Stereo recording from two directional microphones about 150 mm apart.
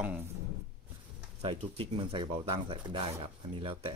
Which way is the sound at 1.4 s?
35° right (ahead or behind).